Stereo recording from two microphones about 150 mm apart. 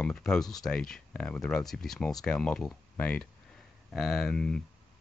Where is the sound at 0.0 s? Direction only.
5° left (ahead or behind).